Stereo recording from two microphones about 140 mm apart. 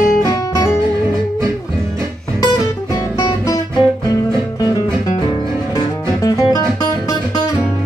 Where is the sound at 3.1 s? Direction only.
25° left (ahead or behind).